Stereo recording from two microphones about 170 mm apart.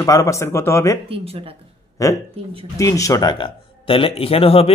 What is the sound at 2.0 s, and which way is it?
A man's voice, 20° left (ahead or behind).